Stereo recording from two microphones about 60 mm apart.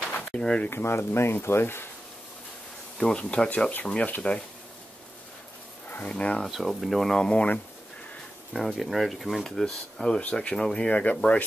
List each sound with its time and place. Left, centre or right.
0.0 s drawer open or close: centre
0.7 s speech: left
3.0 s speech: centre
6.0 s speech: centre
6.4 s speech: centre
8.5 s speech: centre; by 11.4 s left